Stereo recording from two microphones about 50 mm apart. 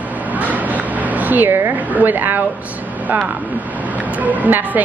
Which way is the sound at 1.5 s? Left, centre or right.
Right.